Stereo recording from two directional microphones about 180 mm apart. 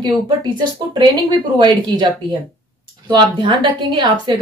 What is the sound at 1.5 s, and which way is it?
Speech, 25° right (ahead or behind).